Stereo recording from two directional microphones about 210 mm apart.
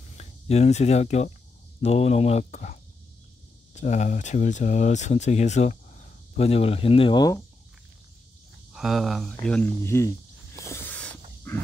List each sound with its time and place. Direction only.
0.2 s speech: 30° left (ahead or behind)
8.7 s speech: centre (ahead or behind)
10.6 s a sound: 10° left (ahead or behind)